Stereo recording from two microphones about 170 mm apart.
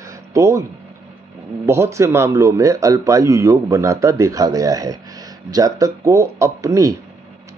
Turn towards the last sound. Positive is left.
turn(degrees=-20)  # may be behind; listen again after turning